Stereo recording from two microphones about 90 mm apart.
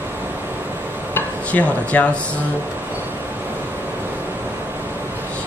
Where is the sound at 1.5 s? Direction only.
15° left (ahead or behind).